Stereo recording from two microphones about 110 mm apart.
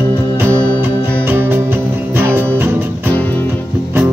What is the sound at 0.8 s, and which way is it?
Music, 20° right (ahead or behind).